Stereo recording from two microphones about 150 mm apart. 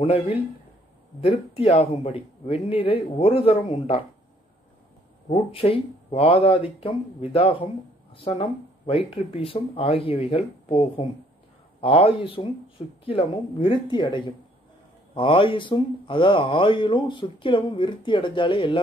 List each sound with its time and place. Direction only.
0.0 s speech: 35° left (ahead or behind)
5.3 s speech: 40° left (ahead or behind)